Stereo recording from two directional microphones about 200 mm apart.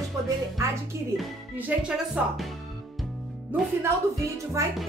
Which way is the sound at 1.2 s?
5° right (ahead or behind).